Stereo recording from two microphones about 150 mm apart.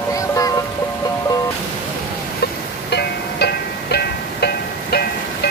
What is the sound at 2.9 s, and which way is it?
Music, 90° left.